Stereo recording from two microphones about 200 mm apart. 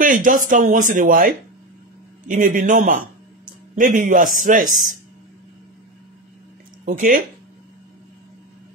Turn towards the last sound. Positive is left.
turn(degrees=-40)  # may be behind; listen again after turning